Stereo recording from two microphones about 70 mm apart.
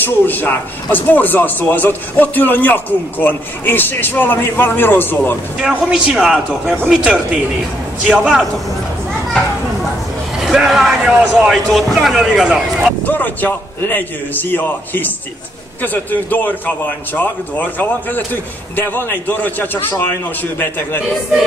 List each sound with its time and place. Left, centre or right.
0.0 s a man's voice: left
5.6 s a man's voice: centre
10.4 s a man's voice: centre
13.0 s a man's voice: left